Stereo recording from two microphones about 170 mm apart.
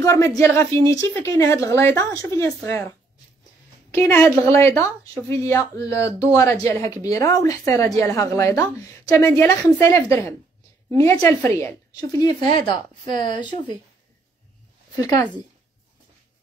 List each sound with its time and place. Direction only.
0.0 s a woman's voice: 20° left (ahead or behind)
3.9 s a woman's voice: 15° left (ahead or behind)
15.0 s a woman's voice: 20° left (ahead or behind)